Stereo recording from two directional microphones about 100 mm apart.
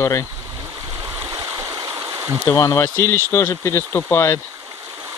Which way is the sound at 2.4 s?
30° left (ahead or behind).